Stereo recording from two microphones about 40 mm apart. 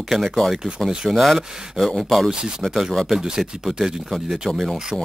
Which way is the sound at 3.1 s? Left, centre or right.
Centre.